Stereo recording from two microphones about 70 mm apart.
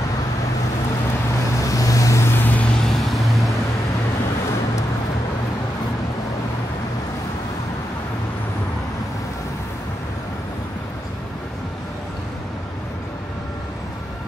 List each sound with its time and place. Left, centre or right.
1.6 s vehicle: left
2.3 s vehicle: left
2.8 s vehicle: centre